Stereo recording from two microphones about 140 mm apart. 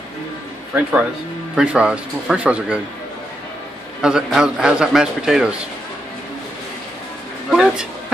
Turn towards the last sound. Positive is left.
turn(degrees=-5)  # may be behind; listen again after turning